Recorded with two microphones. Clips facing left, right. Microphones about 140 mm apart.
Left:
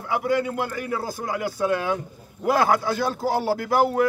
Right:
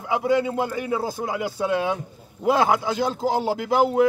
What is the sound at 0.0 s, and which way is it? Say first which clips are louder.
A man's voice: right 2 dB; 20° right (ahead or behind).